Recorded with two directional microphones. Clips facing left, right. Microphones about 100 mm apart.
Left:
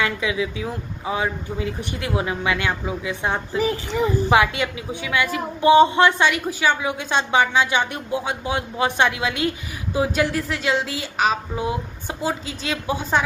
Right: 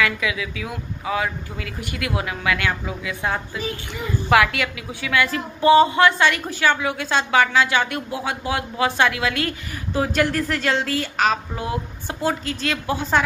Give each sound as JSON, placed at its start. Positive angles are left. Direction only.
{"t": 0.0, "sound": "speech", "side_deg": 25}
{"t": 10.2, "sound": "a woman's voice", "side_deg": 5}